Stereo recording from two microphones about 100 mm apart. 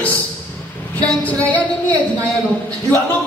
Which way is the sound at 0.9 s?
15° left (ahead or behind).